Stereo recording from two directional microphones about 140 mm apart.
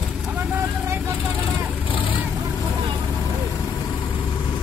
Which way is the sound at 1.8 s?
35° left (ahead or behind).